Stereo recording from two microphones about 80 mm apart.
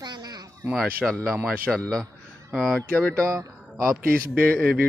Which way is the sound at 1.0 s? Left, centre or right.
Centre.